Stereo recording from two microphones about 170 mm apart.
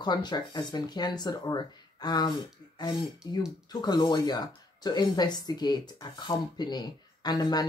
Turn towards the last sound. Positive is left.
turn(degrees=25)  # may be behind; listen again after turning